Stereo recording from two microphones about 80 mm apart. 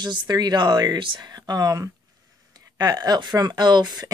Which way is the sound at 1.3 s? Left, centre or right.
Right.